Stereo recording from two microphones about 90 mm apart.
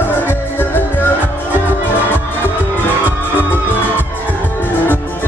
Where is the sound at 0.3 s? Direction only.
25° left (ahead or behind).